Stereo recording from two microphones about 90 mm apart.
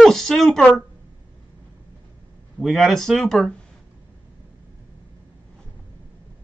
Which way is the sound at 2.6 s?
Centre (ahead or behind).